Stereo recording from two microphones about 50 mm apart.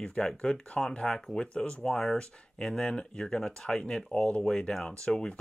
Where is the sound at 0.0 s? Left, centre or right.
Centre.